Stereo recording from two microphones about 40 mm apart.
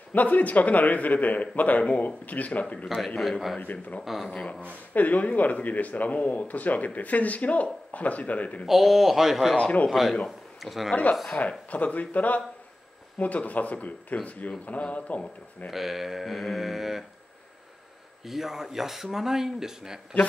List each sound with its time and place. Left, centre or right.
0.1 s speech: left
3.2 s mantra: centre
3.6 s speech: left
4.0 s mantra: centre
4.4 s speech: left
4.9 s speech: left
8.6 s mantra: centre
9.6 s speech: left
9.8 s mantra: centre
10.6 s speech: centre
11.3 s speech: left
15.7 s mantra: centre
18.2 s speech: centre